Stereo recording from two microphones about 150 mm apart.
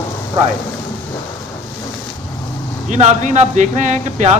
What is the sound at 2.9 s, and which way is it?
A man's voice, 50° right (ahead or behind).